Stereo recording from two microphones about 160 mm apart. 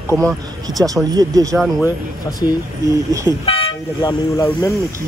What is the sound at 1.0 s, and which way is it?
Speech, 25° right (ahead or behind).